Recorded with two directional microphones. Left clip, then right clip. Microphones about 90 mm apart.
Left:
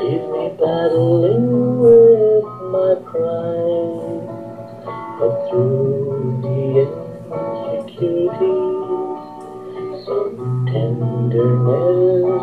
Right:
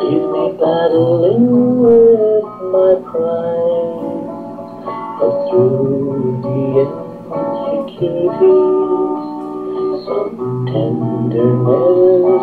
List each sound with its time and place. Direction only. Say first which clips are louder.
0.0 s music: right 5 dB; 35° right (ahead or behind)
5.2 s music: right 5 dB; 30° right (ahead or behind)